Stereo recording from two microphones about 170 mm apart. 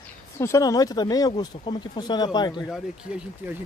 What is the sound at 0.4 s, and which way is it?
Speech, 20° left (ahead or behind).